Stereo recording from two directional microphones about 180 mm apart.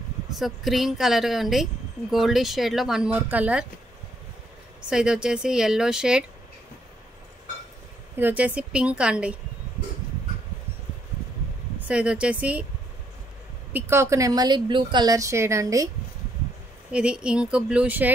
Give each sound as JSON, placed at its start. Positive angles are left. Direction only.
{"t": 0.3, "sound": "a woman's voice", "side_deg": 0}
{"t": 4.8, "sound": "a woman's voice", "side_deg": -5}
{"t": 8.2, "sound": "a woman's voice", "side_deg": -10}
{"t": 11.9, "sound": "a woman's voice", "side_deg": -5}
{"t": 13.7, "sound": "a woman's voice", "side_deg": -15}
{"t": 16.9, "sound": "a woman's voice", "side_deg": -5}